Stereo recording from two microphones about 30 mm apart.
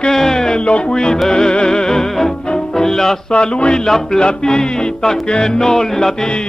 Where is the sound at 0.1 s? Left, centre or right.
Centre.